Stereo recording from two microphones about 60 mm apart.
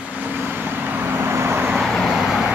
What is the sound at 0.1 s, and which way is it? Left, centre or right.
Vehicle, right.